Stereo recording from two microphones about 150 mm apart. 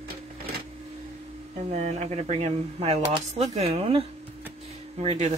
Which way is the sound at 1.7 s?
45° right (ahead or behind).